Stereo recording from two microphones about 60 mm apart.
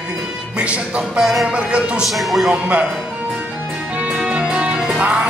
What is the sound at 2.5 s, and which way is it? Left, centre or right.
Music, right.